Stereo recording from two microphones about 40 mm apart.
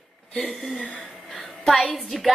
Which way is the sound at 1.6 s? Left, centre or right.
Centre.